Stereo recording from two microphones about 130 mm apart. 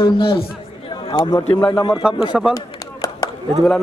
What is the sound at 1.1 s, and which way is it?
Speech, 30° left (ahead or behind).